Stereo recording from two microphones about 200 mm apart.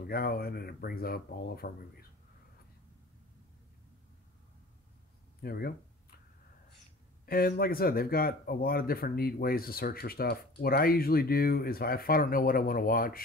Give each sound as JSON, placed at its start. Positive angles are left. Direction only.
{"t": 0.0, "sound": "speech", "side_deg": 50}
{"t": 5.4, "sound": "speech", "side_deg": 50}
{"t": 7.2, "sound": "speech", "side_deg": 45}